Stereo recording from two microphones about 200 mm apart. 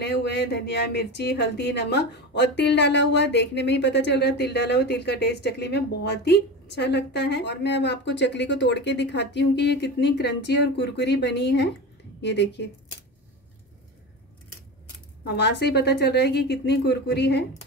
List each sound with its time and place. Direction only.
0.0 s a woman's voice: 60° left (ahead or behind)
15.2 s a woman's voice: 55° left (ahead or behind)